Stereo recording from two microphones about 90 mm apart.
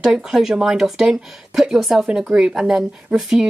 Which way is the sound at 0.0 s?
5° right (ahead or behind).